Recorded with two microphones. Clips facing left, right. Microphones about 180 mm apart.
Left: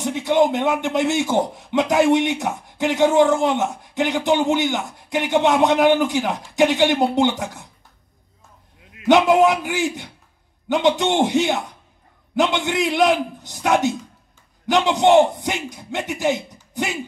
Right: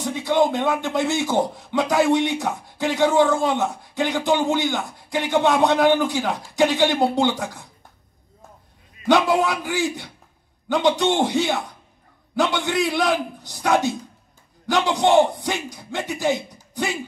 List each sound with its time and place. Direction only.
0.0 s speech: 20° left (ahead or behind)
9.1 s a man's voice: 20° left (ahead or behind)